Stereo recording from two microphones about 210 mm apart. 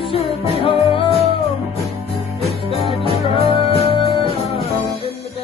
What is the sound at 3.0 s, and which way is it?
Music, 25° left (ahead or behind).